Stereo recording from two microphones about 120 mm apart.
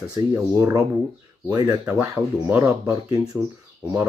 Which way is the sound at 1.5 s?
30° right (ahead or behind).